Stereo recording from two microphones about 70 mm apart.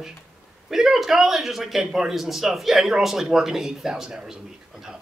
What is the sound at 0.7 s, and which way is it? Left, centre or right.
A man's voice, centre.